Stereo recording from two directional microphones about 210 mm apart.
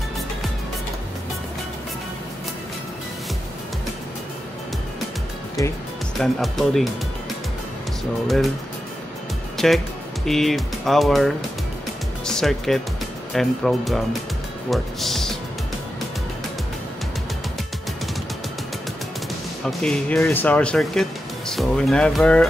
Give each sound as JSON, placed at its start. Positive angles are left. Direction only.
{"t": 5.6, "sound": "speech", "side_deg": 15}
{"t": 6.1, "sound": "speech", "side_deg": 0}
{"t": 9.6, "sound": "speech", "side_deg": 0}
{"t": 19.6, "sound": "speech", "side_deg": 5}